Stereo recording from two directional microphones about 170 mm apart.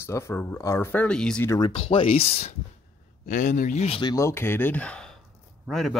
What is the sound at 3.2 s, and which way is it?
Speech, 50° left (ahead or behind).